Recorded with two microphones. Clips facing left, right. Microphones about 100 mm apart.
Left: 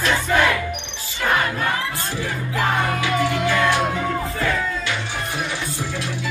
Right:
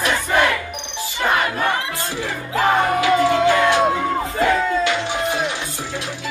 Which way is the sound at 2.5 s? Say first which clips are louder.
Right 5 dB; 20° right (ahead or behind).